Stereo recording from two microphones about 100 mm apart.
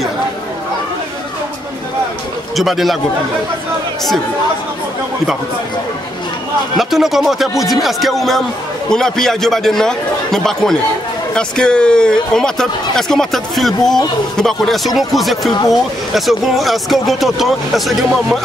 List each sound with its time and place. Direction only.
2.5 s speech: centre (ahead or behind)
6.8 s speech: centre (ahead or behind)